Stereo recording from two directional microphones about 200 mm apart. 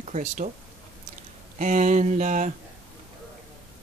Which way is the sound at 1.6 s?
40° right (ahead or behind).